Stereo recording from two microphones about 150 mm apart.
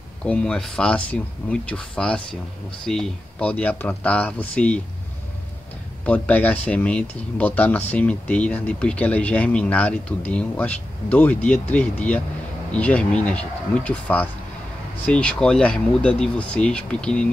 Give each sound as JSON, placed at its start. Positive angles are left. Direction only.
{"t": 0.2, "sound": "speech", "side_deg": 10}
{"t": 6.0, "sound": "speech", "side_deg": 10}